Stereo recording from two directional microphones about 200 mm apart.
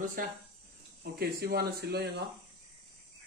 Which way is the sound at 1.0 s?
50° right (ahead or behind).